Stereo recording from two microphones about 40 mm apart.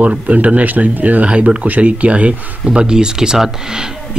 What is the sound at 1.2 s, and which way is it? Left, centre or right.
Speech, right.